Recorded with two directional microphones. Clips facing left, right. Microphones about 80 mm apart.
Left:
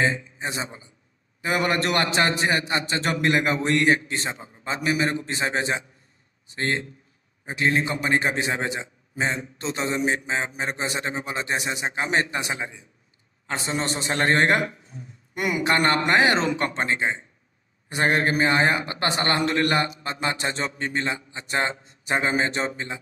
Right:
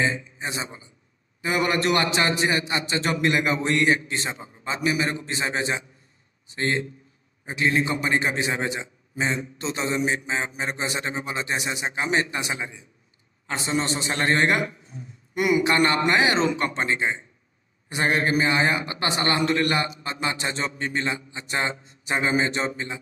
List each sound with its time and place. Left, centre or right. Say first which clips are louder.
0.0 s a man's voice: left 1 dB; left
8.7 s a man's voice: even; left
13.7 s a man's voice: even; left